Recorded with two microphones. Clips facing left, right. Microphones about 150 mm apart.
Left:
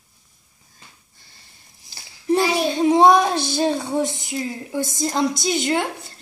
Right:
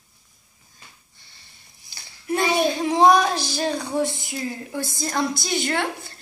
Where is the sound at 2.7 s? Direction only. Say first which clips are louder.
Left 4 dB; 20° left (ahead or behind).